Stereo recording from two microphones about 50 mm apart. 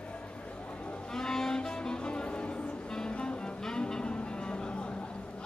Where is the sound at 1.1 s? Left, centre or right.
Centre.